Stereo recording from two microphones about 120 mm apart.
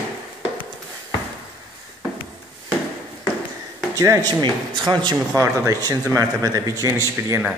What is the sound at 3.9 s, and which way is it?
Speech, 30° right (ahead or behind).